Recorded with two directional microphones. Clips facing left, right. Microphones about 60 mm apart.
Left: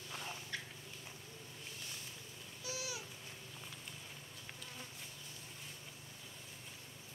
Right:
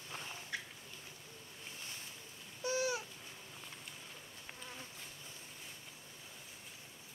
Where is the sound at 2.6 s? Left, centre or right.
Right.